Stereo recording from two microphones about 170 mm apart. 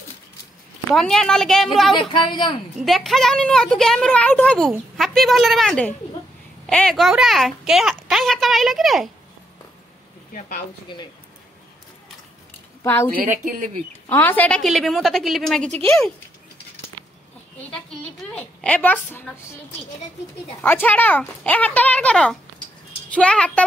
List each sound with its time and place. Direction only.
0.9 s a woman's voice: 5° left (ahead or behind)
2.0 s speech: 25° left (ahead or behind)
2.8 s a woman's voice: centre (ahead or behind)
6.7 s a sound: 5° left (ahead or behind)
13.3 s speech: 50° right (ahead or behind)
14.0 s a woman's voice: 10° left (ahead or behind)
18.3 s speech: 5° left (ahead or behind)
20.6 s speech: 10° left (ahead or behind)